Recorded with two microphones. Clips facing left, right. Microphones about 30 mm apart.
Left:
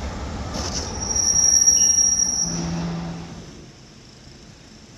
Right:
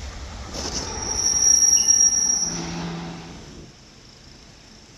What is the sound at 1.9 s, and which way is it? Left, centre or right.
Train, right.